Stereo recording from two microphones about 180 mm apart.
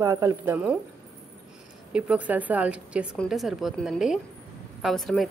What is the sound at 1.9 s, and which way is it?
A woman's voice, 5° right (ahead or behind).